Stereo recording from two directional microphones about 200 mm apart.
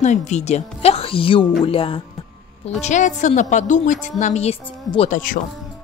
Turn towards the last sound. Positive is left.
turn(degrees=40)  # may be behind; listen again after turning